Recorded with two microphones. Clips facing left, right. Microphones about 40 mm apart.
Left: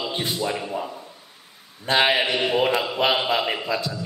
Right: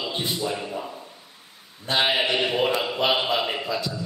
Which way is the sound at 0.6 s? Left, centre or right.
Centre.